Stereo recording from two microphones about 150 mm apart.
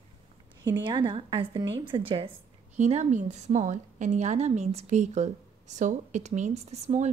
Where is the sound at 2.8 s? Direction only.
50° right (ahead or behind).